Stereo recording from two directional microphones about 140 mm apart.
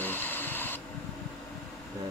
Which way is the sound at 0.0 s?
15° left (ahead or behind).